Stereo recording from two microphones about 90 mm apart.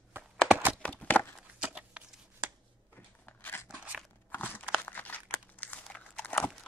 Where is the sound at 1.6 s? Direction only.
15° right (ahead or behind).